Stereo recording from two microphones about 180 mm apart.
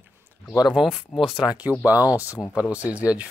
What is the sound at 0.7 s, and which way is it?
Speech, 5° right (ahead or behind).